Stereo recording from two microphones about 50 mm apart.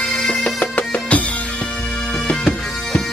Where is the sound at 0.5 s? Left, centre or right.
Left.